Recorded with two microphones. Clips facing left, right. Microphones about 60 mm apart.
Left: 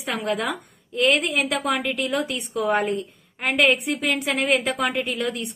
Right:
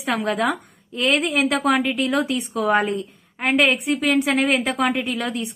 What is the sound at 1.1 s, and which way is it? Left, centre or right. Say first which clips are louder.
Speech: right 3 dB; right.